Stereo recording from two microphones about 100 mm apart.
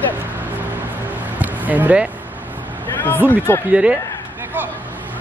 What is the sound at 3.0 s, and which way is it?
Speech, 20° left (ahead or behind).